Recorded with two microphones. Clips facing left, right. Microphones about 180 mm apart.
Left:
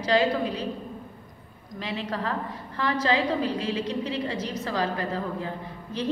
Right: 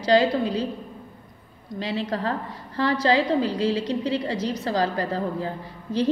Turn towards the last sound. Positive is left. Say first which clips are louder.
# right 7 dB
turn(degrees=-35)  # may be behind; listen again after turning